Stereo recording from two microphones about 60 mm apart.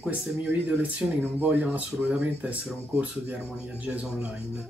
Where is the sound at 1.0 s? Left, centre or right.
Centre.